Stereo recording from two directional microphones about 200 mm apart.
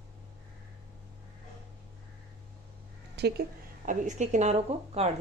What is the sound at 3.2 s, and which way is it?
Speech, 55° right (ahead or behind).